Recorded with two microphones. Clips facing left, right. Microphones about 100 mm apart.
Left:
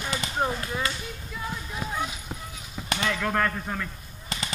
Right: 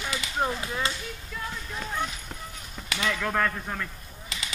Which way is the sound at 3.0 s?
Centre (ahead or behind).